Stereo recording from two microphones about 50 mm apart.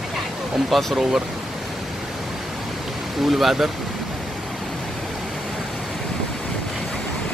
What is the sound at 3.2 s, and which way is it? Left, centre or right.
Speech, centre.